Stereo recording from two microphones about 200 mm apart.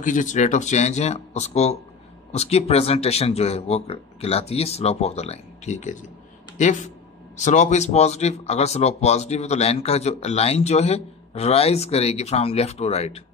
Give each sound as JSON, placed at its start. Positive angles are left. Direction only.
{"t": 0.0, "sound": "speech", "side_deg": 40}